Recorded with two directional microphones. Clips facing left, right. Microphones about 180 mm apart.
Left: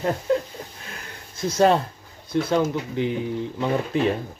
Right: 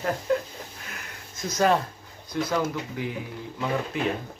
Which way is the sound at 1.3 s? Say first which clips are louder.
Left 4 dB; 30° left (ahead or behind).